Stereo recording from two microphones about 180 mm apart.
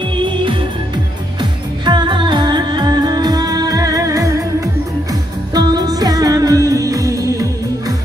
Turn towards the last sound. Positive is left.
turn(degrees=-20)  # may be behind; listen again after turning